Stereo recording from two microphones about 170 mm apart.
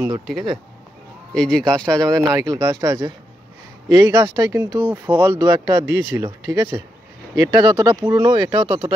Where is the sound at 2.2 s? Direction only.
20° right (ahead or behind).